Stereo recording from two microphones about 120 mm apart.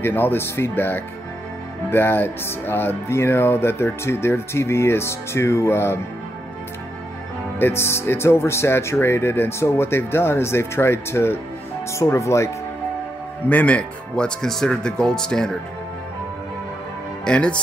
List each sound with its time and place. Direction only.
0.0 s speech: 20° left (ahead or behind)
7.5 s speech: 20° left (ahead or behind)
13.5 s speech: 10° left (ahead or behind)
17.2 s speech: 10° left (ahead or behind)